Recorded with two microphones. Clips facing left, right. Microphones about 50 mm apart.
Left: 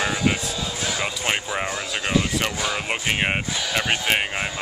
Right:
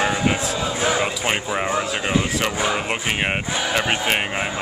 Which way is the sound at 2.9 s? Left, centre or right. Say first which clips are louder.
Right 1 dB; centre.